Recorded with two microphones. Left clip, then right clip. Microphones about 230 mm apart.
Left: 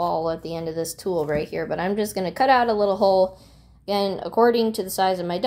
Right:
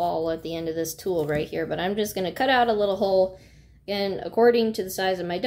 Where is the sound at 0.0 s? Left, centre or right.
Centre.